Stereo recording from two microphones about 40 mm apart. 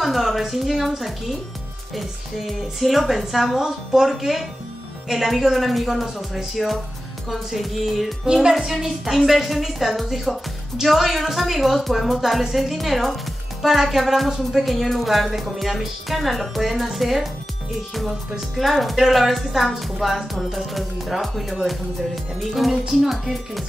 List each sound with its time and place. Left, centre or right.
0.0 s a woman's voice: centre
8.3 s a woman's voice: centre
18.6 s a woman's voice: centre